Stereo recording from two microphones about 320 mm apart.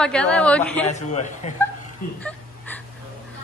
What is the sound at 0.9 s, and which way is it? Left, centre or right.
Speech, left.